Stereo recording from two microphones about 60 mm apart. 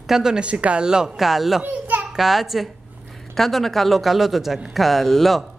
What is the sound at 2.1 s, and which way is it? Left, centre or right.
A woman's voice, centre.